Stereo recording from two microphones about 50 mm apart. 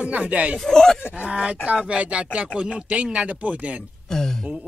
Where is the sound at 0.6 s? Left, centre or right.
Centre.